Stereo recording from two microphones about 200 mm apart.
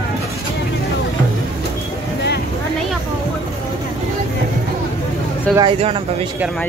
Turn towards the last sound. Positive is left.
turn(degrees=-25)  # may be behind; listen again after turning